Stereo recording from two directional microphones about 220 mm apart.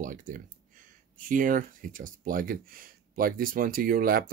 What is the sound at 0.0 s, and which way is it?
Speech, 35° right (ahead or behind).